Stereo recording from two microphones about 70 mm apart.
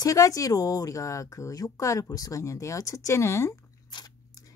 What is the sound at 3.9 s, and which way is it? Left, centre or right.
Biting, left.